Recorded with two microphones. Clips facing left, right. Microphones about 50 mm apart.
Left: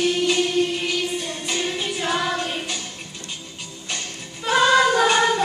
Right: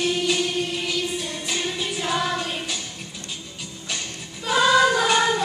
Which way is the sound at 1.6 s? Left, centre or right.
Centre.